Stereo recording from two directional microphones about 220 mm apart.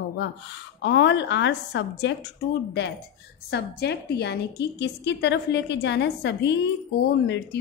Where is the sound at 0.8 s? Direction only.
55° left (ahead or behind).